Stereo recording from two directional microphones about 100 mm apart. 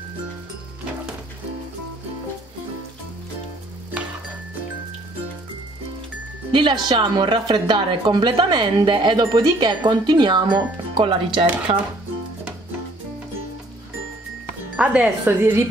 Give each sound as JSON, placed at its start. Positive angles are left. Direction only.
{"t": 6.5, "sound": "a woman's voice", "side_deg": -55}
{"t": 11.7, "sound": "speech", "side_deg": -90}
{"t": 14.8, "sound": "speech", "side_deg": -10}